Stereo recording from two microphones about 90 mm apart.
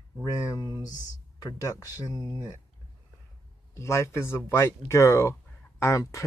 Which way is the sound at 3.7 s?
30° left (ahead or behind).